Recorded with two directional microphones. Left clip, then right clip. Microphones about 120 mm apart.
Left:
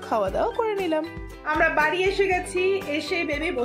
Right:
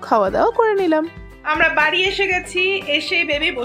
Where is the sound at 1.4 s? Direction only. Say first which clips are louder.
Right 5 dB; centre (ahead or behind).